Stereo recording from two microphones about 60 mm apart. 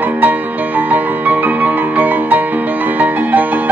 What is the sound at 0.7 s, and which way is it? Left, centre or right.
Music, right.